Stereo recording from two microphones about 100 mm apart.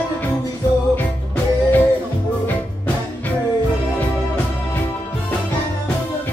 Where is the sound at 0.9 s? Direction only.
15° left (ahead or behind).